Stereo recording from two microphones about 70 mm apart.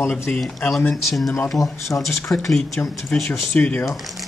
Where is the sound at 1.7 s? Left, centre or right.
Left.